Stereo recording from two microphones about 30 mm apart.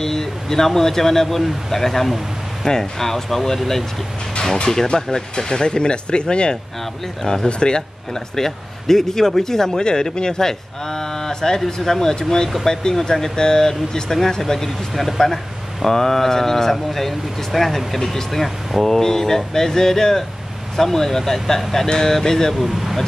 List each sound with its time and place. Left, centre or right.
0.0 s a man's voice: centre
4.6 s speech: left
8.1 s a man's voice: centre
15.0 s a man's voice: centre
22.5 s speech: centre